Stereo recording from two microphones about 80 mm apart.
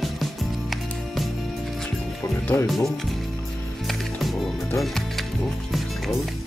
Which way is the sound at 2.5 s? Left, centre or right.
Left.